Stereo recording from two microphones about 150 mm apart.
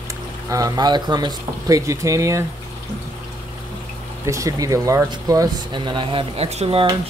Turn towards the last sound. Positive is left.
turn(degrees=-40)  # may be behind; listen again after turning